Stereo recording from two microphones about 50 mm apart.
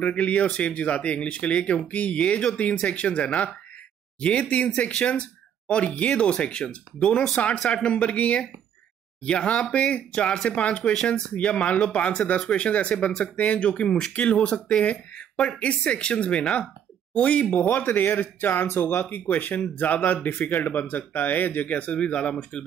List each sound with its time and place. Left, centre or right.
0.0 s speech: left
7.8 s speech: left
10.8 s speech: centre
11.3 s a woman's voice: left
15.6 s speech: left